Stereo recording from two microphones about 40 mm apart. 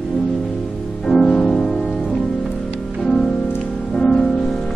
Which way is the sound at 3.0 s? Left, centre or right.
Centre.